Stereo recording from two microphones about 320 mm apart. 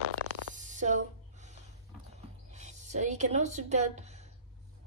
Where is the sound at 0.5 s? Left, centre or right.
Right.